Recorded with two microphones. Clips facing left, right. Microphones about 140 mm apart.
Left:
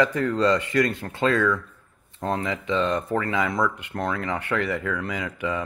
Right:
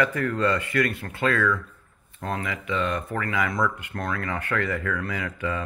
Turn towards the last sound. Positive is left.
turn(degrees=15)  # may be behind; listen again after turning